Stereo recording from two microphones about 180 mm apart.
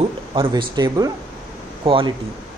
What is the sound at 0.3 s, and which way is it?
Speech, 30° right (ahead or behind).